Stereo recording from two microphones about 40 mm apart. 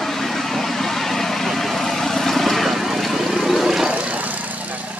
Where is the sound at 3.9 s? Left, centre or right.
Right.